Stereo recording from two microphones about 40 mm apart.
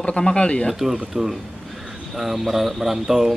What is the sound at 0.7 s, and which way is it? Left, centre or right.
Speech, centre.